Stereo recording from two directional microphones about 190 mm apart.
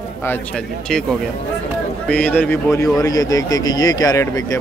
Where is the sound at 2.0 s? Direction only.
5° left (ahead or behind).